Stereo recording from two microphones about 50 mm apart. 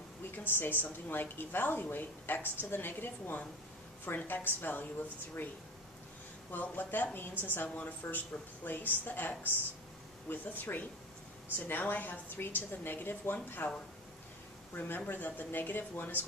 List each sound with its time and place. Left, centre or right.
0.4 s a woman's voice: left
6.5 s a woman's voice: left
14.7 s a woman's voice: left